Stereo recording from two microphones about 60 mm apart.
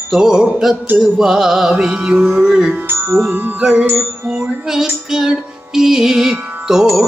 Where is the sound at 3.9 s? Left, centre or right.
Centre.